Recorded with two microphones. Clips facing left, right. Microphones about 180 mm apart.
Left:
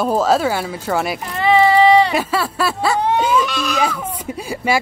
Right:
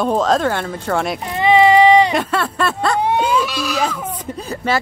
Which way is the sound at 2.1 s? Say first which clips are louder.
Even; 5° left (ahead or behind).